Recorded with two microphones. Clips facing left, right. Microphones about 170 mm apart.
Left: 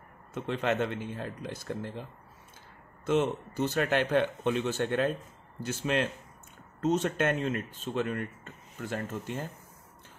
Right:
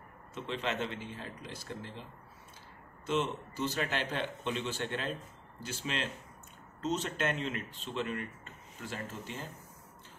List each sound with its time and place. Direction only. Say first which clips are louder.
0.3 s a man's voice: left 6 dB; 55° left (ahead or behind)
3.1 s a man's voice: left 6 dB; 50° left (ahead or behind)